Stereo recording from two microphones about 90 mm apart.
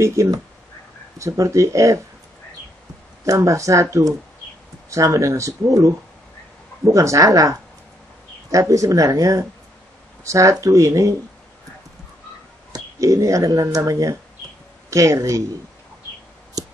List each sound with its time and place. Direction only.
0.0 s speech: 35° right (ahead or behind)
3.3 s speech: 35° right (ahead or behind)
12.7 s speech: 35° right (ahead or behind)
16.6 s a sound: 45° right (ahead or behind)